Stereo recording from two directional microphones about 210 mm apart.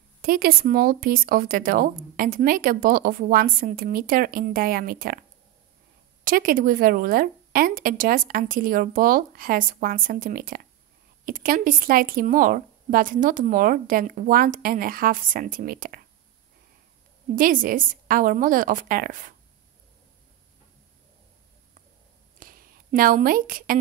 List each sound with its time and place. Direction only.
0.2 s speech: 45° right (ahead or behind)
6.2 s speech: 40° right (ahead or behind)
17.4 s speech: 40° right (ahead or behind)
22.4 s a sound: 40° right (ahead or behind)